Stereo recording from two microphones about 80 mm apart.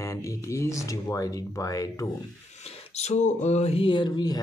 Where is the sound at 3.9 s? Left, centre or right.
Left.